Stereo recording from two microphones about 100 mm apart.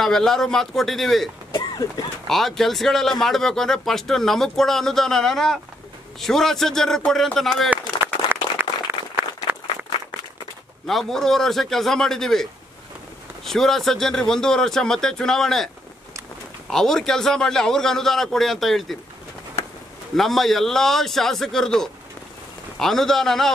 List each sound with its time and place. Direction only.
0.0 s speech: 5° left (ahead or behind)
1.5 s a sound: 45° left (ahead or behind)
2.2 s speech: 5° left (ahead or behind)
8.6 s a sound: 20° right (ahead or behind)
10.9 s speech: 5° left (ahead or behind)
16.7 s speech: 5° left (ahead or behind)
20.2 s speech: centre (ahead or behind)